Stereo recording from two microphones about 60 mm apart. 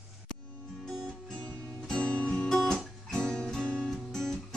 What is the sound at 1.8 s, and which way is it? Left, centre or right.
Music, centre.